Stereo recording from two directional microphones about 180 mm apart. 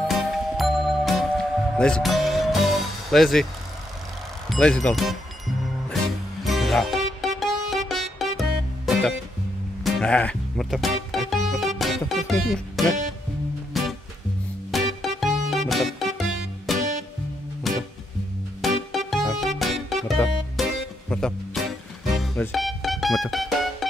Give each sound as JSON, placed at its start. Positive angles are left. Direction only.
{"t": 0.1, "sound": "music", "side_deg": 0}
{"t": 4.5, "sound": "speech", "side_deg": 5}
{"t": 6.4, "sound": "music", "side_deg": 0}